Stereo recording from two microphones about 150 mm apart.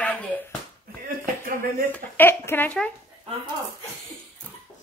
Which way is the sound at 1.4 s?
65° right (ahead or behind).